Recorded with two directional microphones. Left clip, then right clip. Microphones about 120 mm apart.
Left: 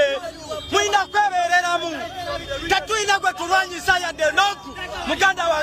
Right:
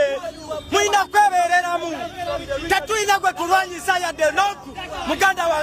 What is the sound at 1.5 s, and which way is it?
Speech, 25° right (ahead or behind).